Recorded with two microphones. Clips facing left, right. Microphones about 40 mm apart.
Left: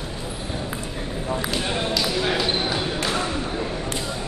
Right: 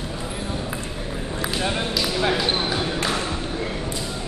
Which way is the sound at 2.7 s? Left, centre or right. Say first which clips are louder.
Right 1 dB; centre.